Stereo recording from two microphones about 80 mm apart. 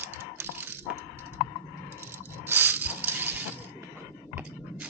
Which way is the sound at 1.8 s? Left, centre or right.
Right.